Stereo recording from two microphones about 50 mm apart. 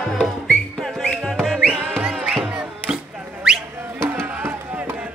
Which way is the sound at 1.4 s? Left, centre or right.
Centre.